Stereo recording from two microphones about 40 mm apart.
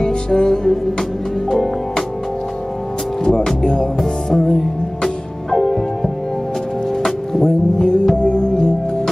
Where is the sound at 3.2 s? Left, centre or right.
Centre.